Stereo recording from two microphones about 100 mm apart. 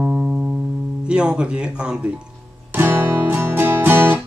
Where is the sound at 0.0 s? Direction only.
15° right (ahead or behind).